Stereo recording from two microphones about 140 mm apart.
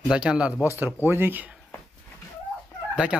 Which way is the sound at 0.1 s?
5° right (ahead or behind).